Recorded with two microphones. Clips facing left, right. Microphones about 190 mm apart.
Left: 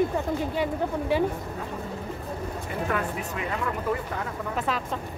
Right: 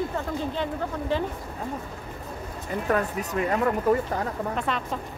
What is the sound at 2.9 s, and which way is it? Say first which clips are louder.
Speech: right 4 dB; 40° right (ahead or behind).